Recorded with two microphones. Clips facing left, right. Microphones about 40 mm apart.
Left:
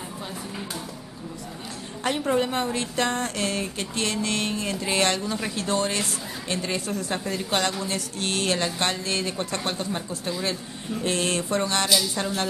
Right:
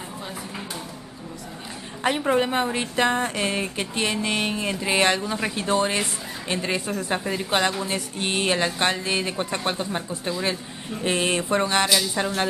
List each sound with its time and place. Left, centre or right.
2.0 s speech: centre